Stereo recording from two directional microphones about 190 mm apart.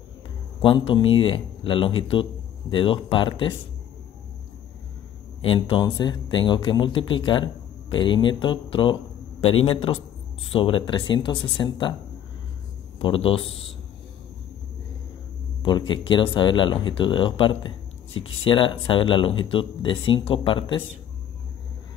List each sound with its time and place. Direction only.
0.6 s speech: 25° left (ahead or behind)
5.4 s speech: 25° left (ahead or behind)
13.0 s speech: 30° left (ahead or behind)
15.6 s speech: 25° left (ahead or behind)